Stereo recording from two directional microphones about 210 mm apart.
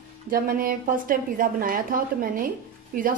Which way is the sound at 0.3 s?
40° right (ahead or behind).